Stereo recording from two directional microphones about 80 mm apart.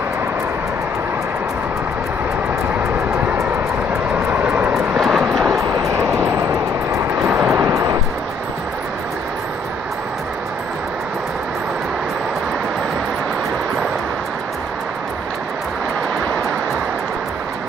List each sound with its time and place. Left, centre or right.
4.3 s vehicle: right
4.7 s vehicle: centre
7.5 s music: right